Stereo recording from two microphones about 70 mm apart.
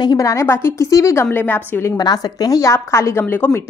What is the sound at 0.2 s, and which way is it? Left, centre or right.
Speech, left.